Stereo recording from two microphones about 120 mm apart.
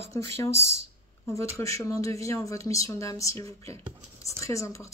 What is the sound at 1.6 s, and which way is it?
A woman's voice, 25° left (ahead or behind).